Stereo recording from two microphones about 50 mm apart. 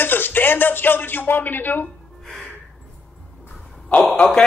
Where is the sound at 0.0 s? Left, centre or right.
Left.